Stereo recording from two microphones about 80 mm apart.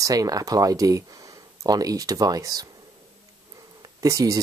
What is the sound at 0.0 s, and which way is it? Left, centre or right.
Speech, right.